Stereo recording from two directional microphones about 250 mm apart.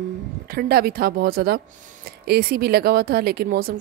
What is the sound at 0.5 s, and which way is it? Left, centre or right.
A woman's voice, right.